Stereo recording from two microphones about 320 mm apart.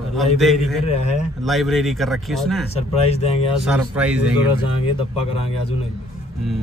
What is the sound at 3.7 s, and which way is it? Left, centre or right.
Speech, centre.